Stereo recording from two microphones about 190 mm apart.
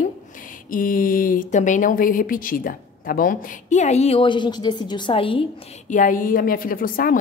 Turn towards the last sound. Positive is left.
turn(degrees=50)  # may be behind; listen again after turning